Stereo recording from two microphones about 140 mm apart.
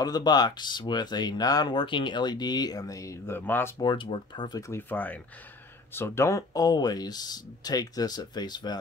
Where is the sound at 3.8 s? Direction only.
35° left (ahead or behind).